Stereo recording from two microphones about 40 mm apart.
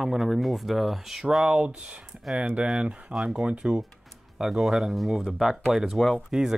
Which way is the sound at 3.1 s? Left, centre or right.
Centre.